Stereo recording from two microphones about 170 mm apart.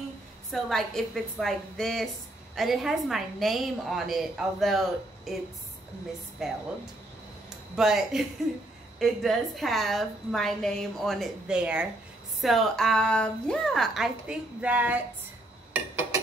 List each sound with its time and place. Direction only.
0.5 s a woman's voice: centre (ahead or behind)
6.4 s a woman's voice: centre (ahead or behind)
7.7 s a woman's voice: centre (ahead or behind)
15.7 s a sound: 15° right (ahead or behind)